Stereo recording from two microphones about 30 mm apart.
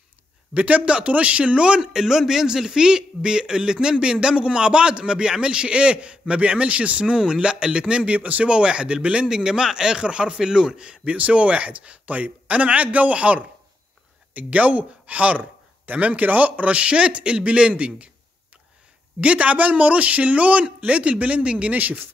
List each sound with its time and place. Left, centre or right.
0.6 s a man's voice: right
1.8 s a man's voice: centre; by 7.2 s right
7.2 s a man's voice: right
8.0 s a man's voice: right
8.5 s a man's voice: right
9.3 s a man's voice: right
11.1 s a man's voice: right
19.2 s a man's voice: right
20.6 s a man's voice: right
21.7 s speech: right